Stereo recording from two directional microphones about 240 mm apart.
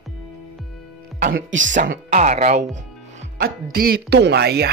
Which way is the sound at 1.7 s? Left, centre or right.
Right.